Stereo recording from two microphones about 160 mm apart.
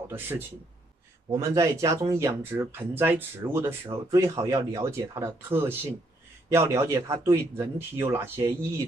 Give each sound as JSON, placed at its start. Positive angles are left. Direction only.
{"t": 0.1, "sound": "speech", "side_deg": -15}